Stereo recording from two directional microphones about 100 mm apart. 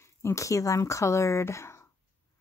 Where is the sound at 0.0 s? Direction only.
30° left (ahead or behind).